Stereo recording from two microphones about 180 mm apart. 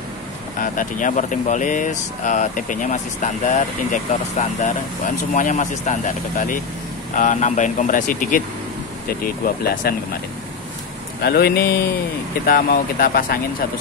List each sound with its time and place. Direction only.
0.6 s speech: 45° left (ahead or behind)
11.2 s speech: 60° left (ahead or behind)